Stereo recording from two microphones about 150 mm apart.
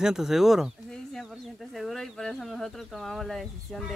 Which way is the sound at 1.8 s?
Centre (ahead or behind).